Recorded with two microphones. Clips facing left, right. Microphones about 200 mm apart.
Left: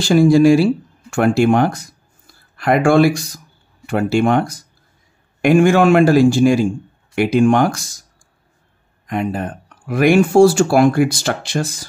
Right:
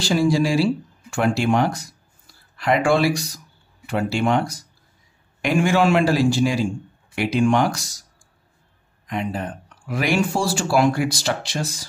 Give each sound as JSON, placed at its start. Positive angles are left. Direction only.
{"t": 0.0, "sound": "speech", "side_deg": 55}
{"t": 9.0, "sound": "speech", "side_deg": 50}